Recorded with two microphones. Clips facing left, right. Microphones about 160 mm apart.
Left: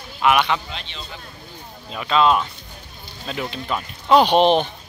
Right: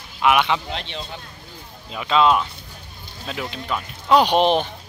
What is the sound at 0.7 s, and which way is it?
Speech, 65° right (ahead or behind).